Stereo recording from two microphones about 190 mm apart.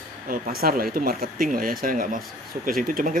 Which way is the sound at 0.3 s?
50° right (ahead or behind).